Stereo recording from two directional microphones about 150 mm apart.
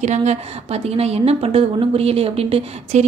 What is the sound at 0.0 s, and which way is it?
A woman's voice, 50° right (ahead or behind).